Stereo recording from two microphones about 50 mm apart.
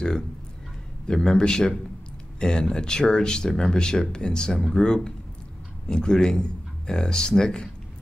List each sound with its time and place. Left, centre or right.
1.0 s speech: centre